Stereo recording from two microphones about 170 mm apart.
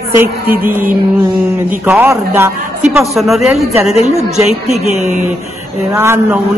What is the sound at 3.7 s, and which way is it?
A woman's voice, 40° left (ahead or behind).